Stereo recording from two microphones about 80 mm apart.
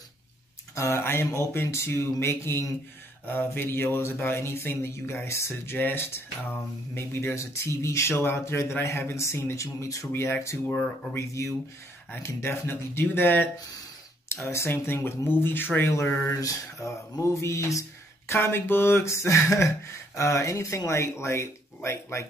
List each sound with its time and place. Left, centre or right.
0.7 s speech: left
16.3 s speech: left